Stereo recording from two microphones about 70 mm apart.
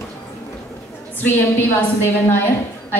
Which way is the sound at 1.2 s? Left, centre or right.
Left.